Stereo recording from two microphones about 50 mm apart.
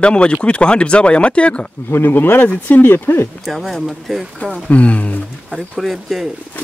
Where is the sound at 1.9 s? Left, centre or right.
Left.